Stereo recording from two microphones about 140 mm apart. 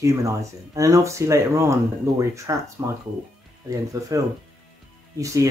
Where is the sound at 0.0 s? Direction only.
20° right (ahead or behind).